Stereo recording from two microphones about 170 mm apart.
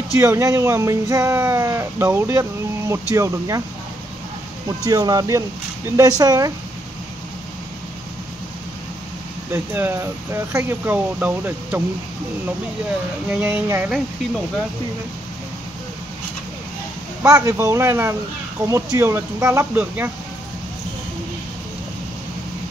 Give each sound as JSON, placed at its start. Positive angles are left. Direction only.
{"t": 0.2, "sound": "speech", "side_deg": -15}
{"t": 4.8, "sound": "speech", "side_deg": -20}
{"t": 9.5, "sound": "speech", "side_deg": -15}
{"t": 13.3, "sound": "speech", "side_deg": -10}
{"t": 17.2, "sound": "speech", "side_deg": -15}